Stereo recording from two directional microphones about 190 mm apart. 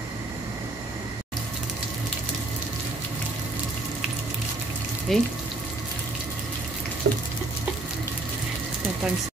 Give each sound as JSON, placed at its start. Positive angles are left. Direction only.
{"t": 5.1, "sound": "speech", "side_deg": 0}
{"t": 7.0, "sound": "frying", "side_deg": -40}